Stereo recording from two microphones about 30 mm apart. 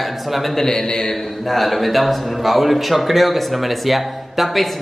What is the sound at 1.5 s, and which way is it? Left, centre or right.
A man's voice, centre.